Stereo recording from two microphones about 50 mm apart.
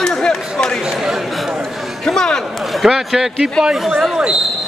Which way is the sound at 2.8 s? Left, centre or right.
Centre.